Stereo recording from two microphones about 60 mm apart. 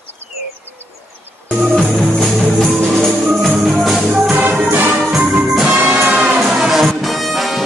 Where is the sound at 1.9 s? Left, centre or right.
Centre.